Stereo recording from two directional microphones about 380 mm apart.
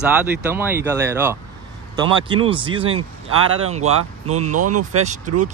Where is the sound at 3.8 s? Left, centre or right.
Right.